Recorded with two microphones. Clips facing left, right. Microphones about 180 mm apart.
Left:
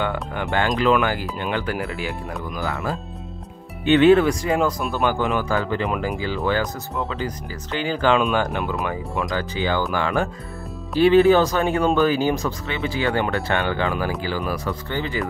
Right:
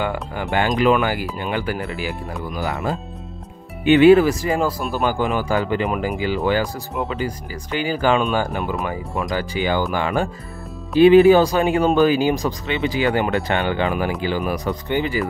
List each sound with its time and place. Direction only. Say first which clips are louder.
0.0 s speech: right 1 dB; 5° right (ahead or behind)
2.6 s speech: right 3 dB; 20° right (ahead or behind); by 9.3 s centre (ahead or behind)
9.3 s speech: right 3 dB; 15° right (ahead or behind)